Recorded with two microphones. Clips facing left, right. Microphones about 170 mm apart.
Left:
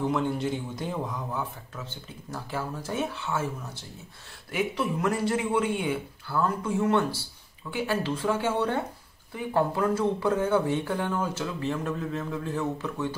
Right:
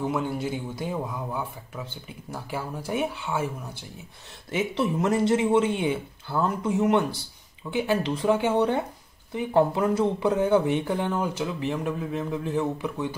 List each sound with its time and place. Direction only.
0.0 s speech: 5° right (ahead or behind)
4.5 s speech: 25° right (ahead or behind)